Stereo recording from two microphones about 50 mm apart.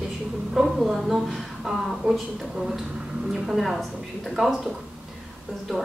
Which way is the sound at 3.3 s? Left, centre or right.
Centre.